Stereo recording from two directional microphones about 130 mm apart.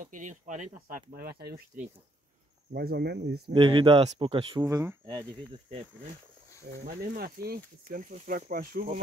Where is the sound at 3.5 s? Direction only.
40° right (ahead or behind).